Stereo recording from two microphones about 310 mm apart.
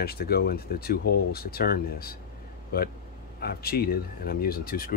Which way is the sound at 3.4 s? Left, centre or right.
Left.